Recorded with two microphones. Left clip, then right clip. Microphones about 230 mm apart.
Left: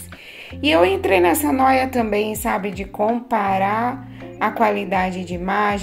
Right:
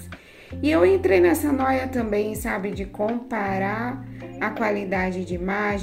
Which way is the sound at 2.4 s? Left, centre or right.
Left.